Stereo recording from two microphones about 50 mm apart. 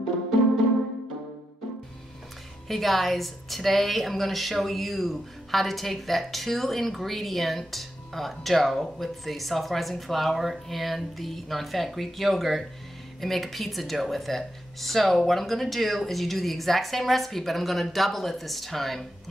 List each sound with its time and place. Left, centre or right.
2.7 s a woman's voice: centre